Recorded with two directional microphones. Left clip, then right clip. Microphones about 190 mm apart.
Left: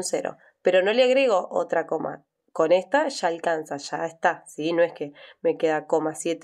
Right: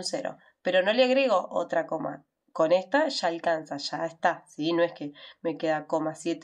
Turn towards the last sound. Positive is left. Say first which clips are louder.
# left 5 dB
turn(degrees=35)  # may be behind; listen again after turning